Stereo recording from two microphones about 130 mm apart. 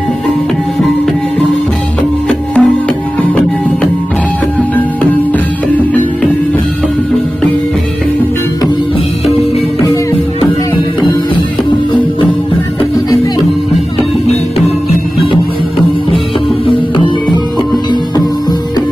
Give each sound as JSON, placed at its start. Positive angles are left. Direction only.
{"t": 2.2, "sound": "music", "side_deg": 5}
{"t": 4.6, "sound": "music", "side_deg": 10}
{"t": 16.6, "sound": "music", "side_deg": 40}